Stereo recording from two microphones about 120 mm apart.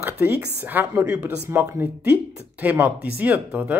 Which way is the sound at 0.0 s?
15° right (ahead or behind).